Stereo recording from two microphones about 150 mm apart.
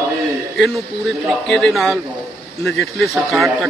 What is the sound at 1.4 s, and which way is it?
A man's voice, 5° left (ahead or behind).